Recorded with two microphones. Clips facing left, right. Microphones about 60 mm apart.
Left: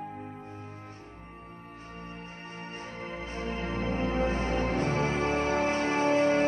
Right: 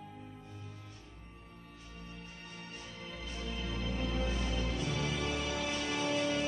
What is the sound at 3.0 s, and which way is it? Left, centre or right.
Music, left.